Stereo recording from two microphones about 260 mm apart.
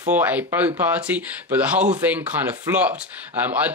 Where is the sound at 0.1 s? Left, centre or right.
Centre.